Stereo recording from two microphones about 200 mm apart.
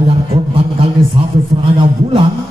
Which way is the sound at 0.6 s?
30° right (ahead or behind).